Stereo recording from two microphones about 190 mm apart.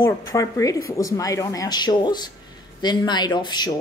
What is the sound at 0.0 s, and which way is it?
A woman's voice, 15° left (ahead or behind).